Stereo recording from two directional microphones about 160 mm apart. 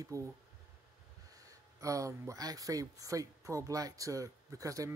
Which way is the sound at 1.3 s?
20° right (ahead or behind).